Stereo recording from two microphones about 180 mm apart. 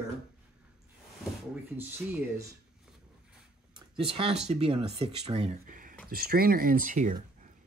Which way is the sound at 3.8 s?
30° right (ahead or behind).